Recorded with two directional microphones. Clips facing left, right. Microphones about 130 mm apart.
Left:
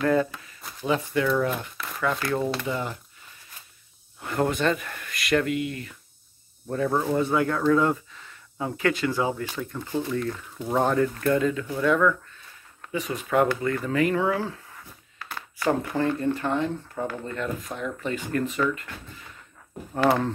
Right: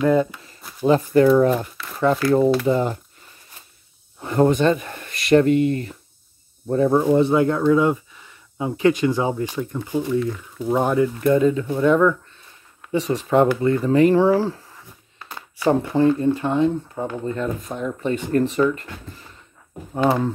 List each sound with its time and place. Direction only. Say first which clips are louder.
0.0 s speech: right 5 dB; 20° right (ahead or behind)
0.8 s speech: right 9 dB; 40° right (ahead or behind)
4.2 s speech: right 7 dB; 25° right (ahead or behind)
6.7 s speech: right 8 dB; 20° right (ahead or behind)
19.9 s speech: right 2 dB; 15° right (ahead or behind)